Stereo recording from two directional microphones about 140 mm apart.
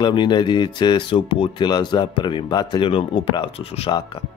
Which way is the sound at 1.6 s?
30° left (ahead or behind).